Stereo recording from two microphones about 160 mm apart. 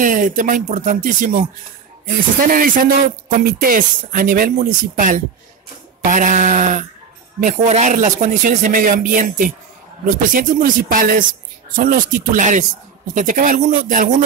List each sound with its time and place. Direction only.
0.0 s speech: 55° right (ahead or behind)
2.5 s speech: 60° right (ahead or behind)